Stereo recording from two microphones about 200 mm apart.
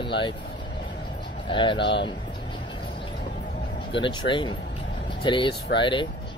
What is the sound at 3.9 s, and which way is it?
Speech, 25° left (ahead or behind).